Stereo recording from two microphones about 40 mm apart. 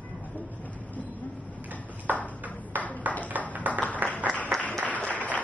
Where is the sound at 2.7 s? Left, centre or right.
Right.